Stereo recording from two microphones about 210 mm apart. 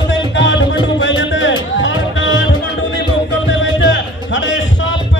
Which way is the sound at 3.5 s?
65° left (ahead or behind).